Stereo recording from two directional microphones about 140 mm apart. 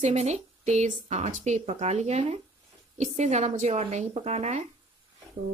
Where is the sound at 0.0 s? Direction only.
55° right (ahead or behind).